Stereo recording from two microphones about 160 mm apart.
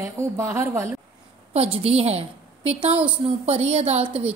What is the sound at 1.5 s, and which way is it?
A woman's voice, 40° right (ahead or behind).